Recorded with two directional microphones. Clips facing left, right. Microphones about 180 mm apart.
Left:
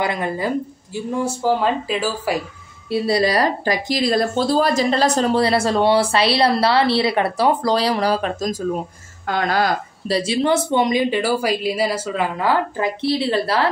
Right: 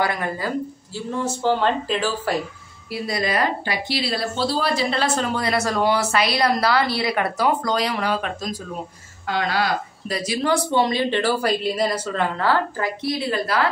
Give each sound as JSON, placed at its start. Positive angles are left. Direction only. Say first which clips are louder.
{"t": 0.0, "sound": "a woman's voice", "louder": "left 2 dB", "side_deg": 20}
{"t": 2.9, "sound": "a woman's voice", "louder": "left 6 dB", "side_deg": 30}
{"t": 10.1, "sound": "a woman's voice", "louder": "left 4 dB", "side_deg": 25}